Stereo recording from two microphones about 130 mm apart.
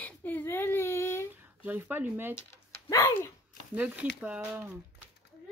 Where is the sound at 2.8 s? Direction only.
20° left (ahead or behind).